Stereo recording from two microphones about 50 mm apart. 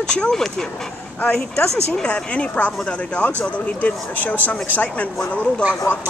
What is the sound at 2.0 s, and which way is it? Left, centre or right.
Speech, left.